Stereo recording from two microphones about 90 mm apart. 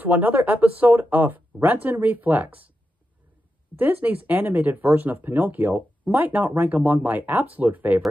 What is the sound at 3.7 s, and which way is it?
Speech, 20° right (ahead or behind).